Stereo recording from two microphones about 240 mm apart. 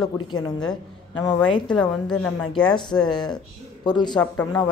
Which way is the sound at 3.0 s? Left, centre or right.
Centre.